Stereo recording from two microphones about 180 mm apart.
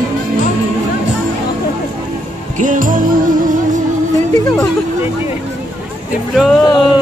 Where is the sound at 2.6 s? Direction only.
45° right (ahead or behind).